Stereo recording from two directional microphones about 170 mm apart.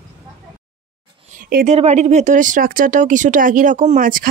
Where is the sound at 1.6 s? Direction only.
40° right (ahead or behind).